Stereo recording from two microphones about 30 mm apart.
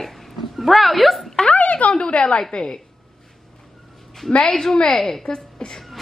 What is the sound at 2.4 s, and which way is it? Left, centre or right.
Speech, left.